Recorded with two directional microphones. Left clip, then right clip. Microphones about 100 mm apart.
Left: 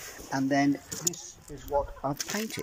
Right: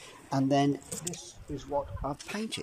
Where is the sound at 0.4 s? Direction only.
30° right (ahead or behind).